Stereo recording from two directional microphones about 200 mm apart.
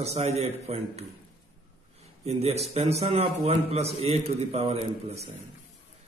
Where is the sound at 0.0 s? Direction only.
30° right (ahead or behind).